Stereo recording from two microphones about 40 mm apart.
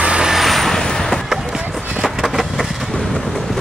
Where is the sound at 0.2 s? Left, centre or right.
Centre.